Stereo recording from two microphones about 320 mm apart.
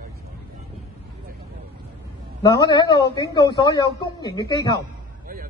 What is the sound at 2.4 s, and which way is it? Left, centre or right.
A woman's voice, centre.